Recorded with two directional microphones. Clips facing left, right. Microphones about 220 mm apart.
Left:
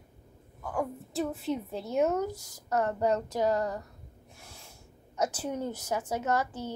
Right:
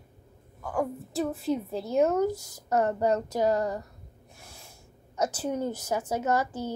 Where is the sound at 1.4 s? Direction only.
30° right (ahead or behind).